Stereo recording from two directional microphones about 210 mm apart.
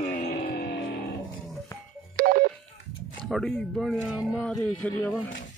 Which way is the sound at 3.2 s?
Centre (ahead or behind).